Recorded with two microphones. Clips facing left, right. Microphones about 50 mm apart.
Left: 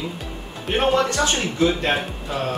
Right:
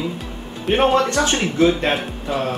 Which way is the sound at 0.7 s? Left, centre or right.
Centre.